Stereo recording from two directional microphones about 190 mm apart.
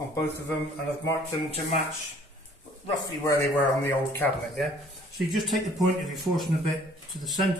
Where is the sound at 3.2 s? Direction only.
15° left (ahead or behind).